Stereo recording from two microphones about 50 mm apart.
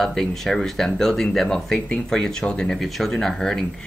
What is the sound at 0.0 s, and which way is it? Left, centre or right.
Speech, centre.